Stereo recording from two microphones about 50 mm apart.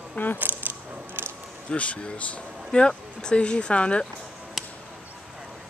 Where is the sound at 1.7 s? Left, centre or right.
Left.